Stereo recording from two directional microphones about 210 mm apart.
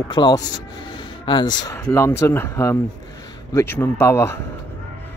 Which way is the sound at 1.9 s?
10° left (ahead or behind).